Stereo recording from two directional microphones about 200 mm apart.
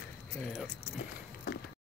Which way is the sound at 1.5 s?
50° left (ahead or behind).